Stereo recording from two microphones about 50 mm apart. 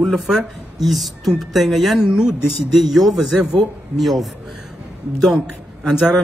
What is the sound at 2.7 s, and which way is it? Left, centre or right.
Speech, centre.